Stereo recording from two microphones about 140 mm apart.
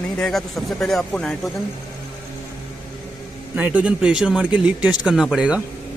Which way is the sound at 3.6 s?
10° right (ahead or behind).